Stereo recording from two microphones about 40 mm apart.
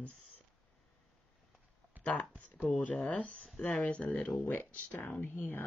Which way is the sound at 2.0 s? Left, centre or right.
Left.